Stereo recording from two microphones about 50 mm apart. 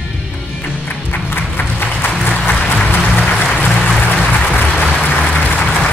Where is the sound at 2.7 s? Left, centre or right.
Left.